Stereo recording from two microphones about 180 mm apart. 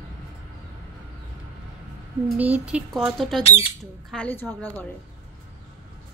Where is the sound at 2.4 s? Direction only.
5° right (ahead or behind); by 4.8 s 10° left (ahead or behind).